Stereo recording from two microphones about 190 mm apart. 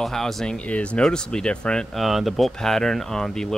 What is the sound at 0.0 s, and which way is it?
Speech, centre (ahead or behind).